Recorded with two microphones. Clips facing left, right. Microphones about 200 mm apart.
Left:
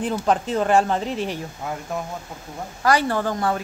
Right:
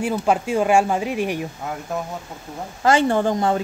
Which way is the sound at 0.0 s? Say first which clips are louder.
Right 1 dB; 10° right (ahead or behind).